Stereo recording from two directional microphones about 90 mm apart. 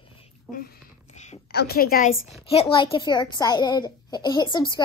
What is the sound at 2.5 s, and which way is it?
Speech, 85° left.